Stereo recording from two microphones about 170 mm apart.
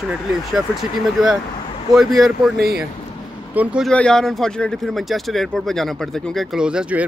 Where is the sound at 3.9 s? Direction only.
5° left (ahead or behind).